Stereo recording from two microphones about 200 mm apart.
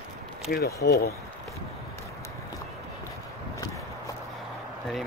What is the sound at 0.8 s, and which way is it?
Speech, 50° left (ahead or behind).